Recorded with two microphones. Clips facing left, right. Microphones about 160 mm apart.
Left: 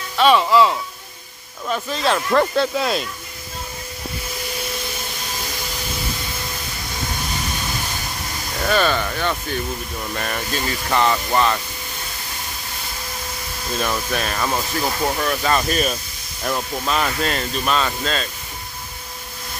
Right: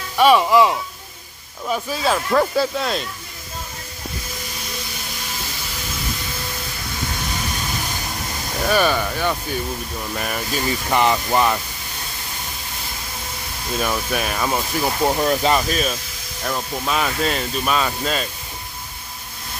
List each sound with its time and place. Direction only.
0.2 s speech: 10° right (ahead or behind)
8.6 s speech: 10° right (ahead or behind)
13.7 s speech: 10° right (ahead or behind)
15.0 s speech: 25° right (ahead or behind)
15.7 s speech: centre (ahead or behind)